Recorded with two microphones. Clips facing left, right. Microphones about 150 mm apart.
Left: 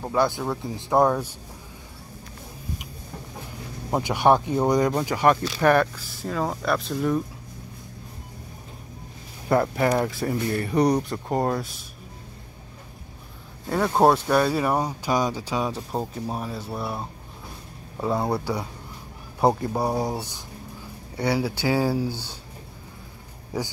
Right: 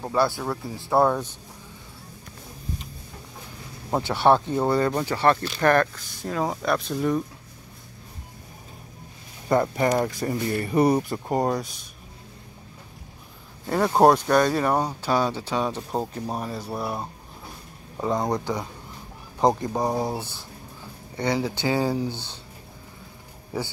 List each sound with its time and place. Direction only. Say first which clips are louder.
0.2 s speech: even; 15° left (ahead or behind)
3.9 s speech: even; 15° left (ahead or behind)
9.5 s speech: even; centre (ahead or behind)
13.7 s speech: right 1 dB; 5° right (ahead or behind)
18.0 s speech: even; 5° left (ahead or behind)
23.5 s speech: left 1 dB; 10° left (ahead or behind)